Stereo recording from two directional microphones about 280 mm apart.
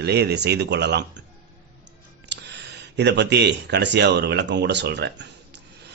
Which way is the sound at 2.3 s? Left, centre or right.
Right.